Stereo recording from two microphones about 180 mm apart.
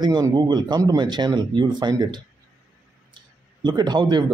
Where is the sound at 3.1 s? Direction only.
25° right (ahead or behind).